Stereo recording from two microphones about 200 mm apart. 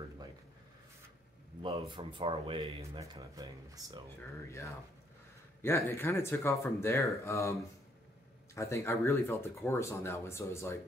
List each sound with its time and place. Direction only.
1.6 s speech: 25° right (ahead or behind)
4.5 s speech: 15° left (ahead or behind)
8.5 s speech: 15° left (ahead or behind)